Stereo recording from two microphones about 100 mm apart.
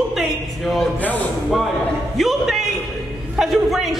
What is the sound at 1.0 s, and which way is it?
Speech, 15° left (ahead or behind).